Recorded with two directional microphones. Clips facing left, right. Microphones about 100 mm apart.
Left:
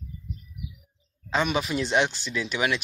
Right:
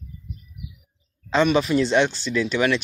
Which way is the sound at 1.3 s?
10° left (ahead or behind).